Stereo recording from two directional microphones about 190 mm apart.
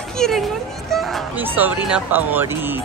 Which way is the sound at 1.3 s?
10° right (ahead or behind).